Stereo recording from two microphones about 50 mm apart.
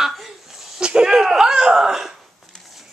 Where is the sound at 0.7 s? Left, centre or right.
Centre.